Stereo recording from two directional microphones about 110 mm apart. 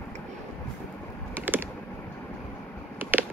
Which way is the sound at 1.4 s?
15° right (ahead or behind).